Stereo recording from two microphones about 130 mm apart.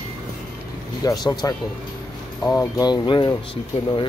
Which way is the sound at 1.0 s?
30° left (ahead or behind).